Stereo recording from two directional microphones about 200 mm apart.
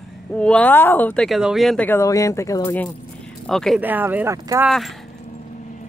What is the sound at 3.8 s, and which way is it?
Speech, 10° right (ahead or behind).